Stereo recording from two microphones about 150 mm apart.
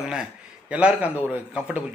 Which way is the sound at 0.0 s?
5° right (ahead or behind).